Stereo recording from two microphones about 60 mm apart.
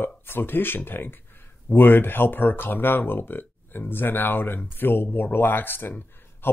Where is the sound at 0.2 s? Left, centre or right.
Left.